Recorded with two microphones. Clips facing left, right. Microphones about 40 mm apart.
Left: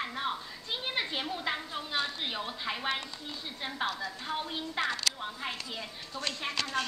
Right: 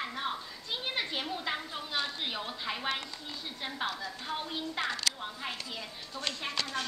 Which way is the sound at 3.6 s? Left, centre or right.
Centre.